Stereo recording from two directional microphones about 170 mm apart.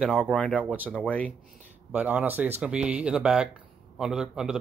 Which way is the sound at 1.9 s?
10° right (ahead or behind).